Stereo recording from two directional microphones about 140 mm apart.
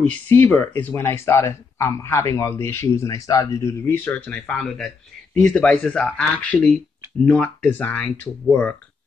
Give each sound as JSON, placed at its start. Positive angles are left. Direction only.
{"t": 0.0, "sound": "speech", "side_deg": 10}